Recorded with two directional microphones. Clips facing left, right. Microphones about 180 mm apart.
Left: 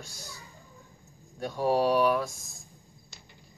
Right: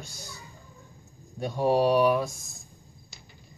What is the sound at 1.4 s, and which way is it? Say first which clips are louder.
Speech: right 2 dB; 20° right (ahead or behind).